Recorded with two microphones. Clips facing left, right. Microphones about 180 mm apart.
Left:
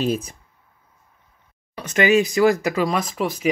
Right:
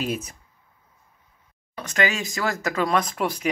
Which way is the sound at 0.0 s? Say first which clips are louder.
Left 5 dB; 30° left (ahead or behind).